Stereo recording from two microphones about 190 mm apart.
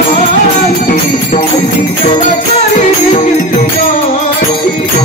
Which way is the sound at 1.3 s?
35° left (ahead or behind).